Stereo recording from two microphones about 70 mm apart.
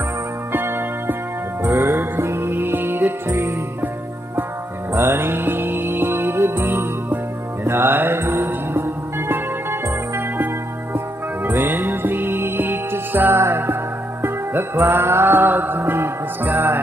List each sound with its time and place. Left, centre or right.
0.5 s music: right
1.6 s music: right
3.3 s music: right
4.9 s music: right
7.6 s mantra: right
8.5 s music: right